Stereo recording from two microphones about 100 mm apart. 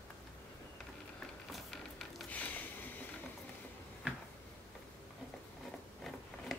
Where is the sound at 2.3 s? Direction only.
15° left (ahead or behind).